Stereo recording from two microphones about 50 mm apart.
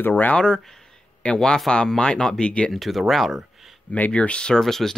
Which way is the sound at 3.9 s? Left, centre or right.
Left.